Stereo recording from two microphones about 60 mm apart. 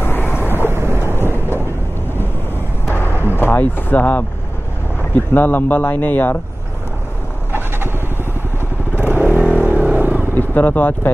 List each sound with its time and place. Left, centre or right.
0.0 s vehicle: left
0.7 s thunder: right
1.1 s vehicle: left
2.9 s vehicle: left
5.1 s speech: left
8.9 s motorcycle: left
9.3 s vehicle: right
10.3 s speech: left